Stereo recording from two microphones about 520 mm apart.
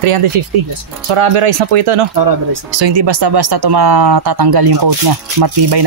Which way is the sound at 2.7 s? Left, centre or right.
Right.